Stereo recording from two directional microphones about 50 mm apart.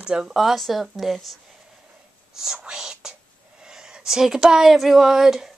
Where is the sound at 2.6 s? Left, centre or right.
Centre.